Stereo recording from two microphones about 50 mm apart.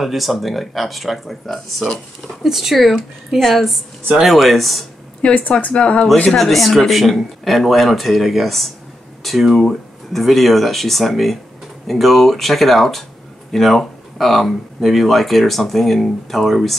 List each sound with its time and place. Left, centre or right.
0.0 s speech: centre
5.2 s speech: left
6.3 s speech: centre